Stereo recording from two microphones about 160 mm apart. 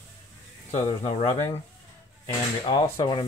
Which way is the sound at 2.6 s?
30° left (ahead or behind).